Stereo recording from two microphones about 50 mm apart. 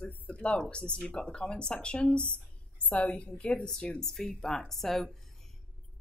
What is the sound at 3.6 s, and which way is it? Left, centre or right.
A woman's voice, centre.